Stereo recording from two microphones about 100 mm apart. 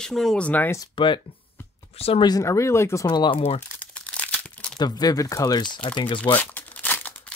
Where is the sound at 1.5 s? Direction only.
25° left (ahead or behind).